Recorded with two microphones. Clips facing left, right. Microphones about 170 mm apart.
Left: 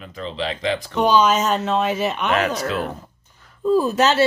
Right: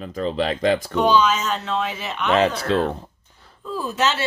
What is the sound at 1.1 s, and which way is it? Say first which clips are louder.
Speech: left 4 dB; 45° left (ahead or behind).